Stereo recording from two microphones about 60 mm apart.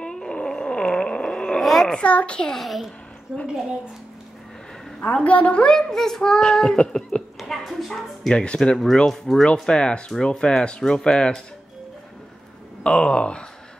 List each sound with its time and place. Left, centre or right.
0.0 s a sound: centre
2.0 s a child's voice: left
2.6 s a child's voice: centre
3.3 s a woman's voice: centre
5.1 s a child's voice: left
7.3 s a child's voice: centre
12.8 s a child's voice: centre